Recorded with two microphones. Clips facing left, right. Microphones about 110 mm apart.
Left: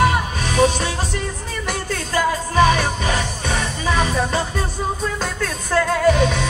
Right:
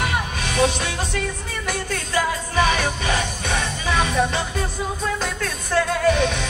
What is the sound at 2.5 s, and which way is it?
Music, 35° left (ahead or behind).